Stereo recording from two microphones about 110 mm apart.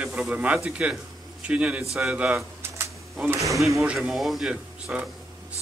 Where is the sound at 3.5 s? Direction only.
Centre (ahead or behind).